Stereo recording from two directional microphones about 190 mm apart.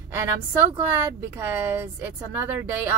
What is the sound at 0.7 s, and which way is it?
Speech, 10° right (ahead or behind).